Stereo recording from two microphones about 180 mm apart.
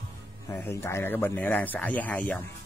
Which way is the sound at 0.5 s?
10° left (ahead or behind).